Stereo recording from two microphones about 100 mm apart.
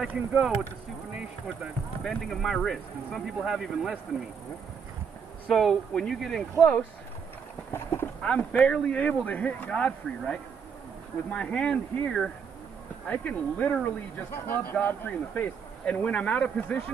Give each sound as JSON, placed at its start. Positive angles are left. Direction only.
{"t": 0.1, "sound": "speech", "side_deg": -10}
{"t": 2.0, "sound": "speech", "side_deg": 5}
{"t": 5.5, "sound": "speech", "side_deg": 0}
{"t": 7.7, "sound": "speech", "side_deg": 25}
{"t": 8.2, "sound": "speech", "side_deg": 10}